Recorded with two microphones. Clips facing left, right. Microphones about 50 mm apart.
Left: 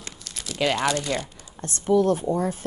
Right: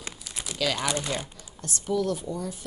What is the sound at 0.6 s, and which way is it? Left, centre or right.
A woman's voice, left.